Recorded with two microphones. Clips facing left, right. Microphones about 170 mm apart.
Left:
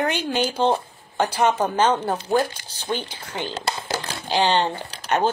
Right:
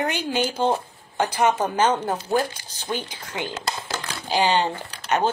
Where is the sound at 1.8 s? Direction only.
15° right (ahead or behind).